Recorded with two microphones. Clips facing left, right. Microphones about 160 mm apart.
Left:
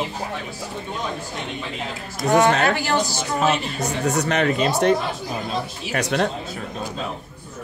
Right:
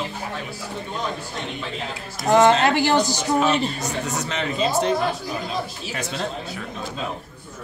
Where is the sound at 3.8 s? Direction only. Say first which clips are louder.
Left 5 dB; 60° left (ahead or behind).